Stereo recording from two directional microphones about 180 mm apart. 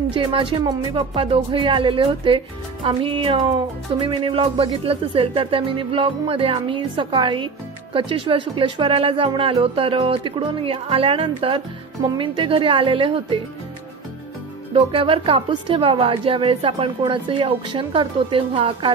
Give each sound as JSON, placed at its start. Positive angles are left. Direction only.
{"t": 0.1, "sound": "a woman's voice", "side_deg": -30}
{"t": 14.7, "sound": "a woman's voice", "side_deg": -30}